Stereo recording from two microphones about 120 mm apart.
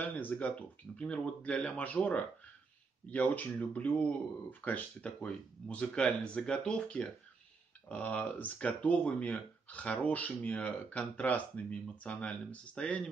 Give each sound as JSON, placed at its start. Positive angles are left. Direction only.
{"t": 0.0, "sound": "speech", "side_deg": 15}